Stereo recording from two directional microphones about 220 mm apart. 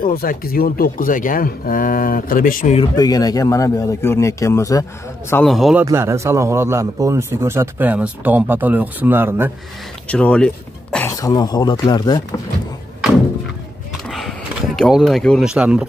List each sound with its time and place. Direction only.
0.0 s speech: 40° left (ahead or behind)
3.0 s a man's voice: 15° left (ahead or behind)
5.3 s speech: centre (ahead or behind)
5.9 s a man's voice: 10° right (ahead or behind)
10.0 s a sound: 5° left (ahead or behind)
11.1 s a man's voice: 15° left (ahead or behind)
14.0 s a sound: centre (ahead or behind)
14.8 s speech: centre (ahead or behind)